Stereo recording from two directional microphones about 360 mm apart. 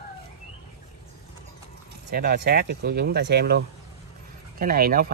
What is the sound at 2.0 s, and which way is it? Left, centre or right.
Speech, right.